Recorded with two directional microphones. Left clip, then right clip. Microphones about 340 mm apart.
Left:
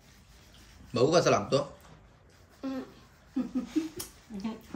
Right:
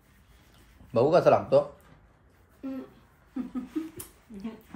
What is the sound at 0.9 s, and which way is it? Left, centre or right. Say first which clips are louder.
Speech: right 4 dB; centre.